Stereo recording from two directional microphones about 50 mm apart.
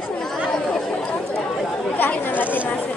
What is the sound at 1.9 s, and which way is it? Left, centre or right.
Chatter, left.